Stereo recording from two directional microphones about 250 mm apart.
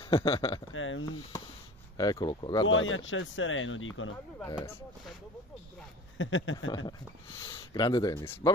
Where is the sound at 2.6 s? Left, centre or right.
Left.